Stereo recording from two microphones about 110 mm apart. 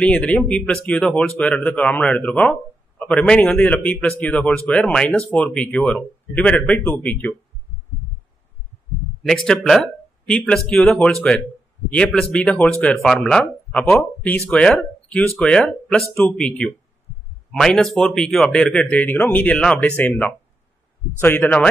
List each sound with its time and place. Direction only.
0.0 s speech: 10° left (ahead or behind)
9.2 s speech: 5° left (ahead or behind)